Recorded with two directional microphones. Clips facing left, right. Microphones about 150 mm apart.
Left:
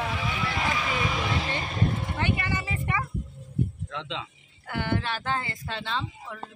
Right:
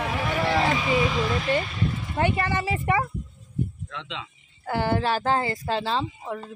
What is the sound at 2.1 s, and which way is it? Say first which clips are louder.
Speech: right 5 dB; 40° right (ahead or behind).